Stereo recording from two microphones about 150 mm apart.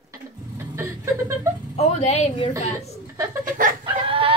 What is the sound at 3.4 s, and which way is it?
Chicken, 65° right (ahead or behind).